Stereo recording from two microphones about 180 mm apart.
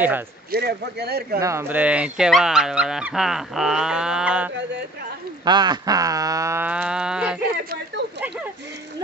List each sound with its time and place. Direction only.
0.5 s speech: 65° right (ahead or behind)
1.4 s speech: 15° right (ahead or behind)
5.4 s speech: 25° right (ahead or behind); by 7.3 s 5° right (ahead or behind)
7.5 s a sound: 55° right (ahead or behind)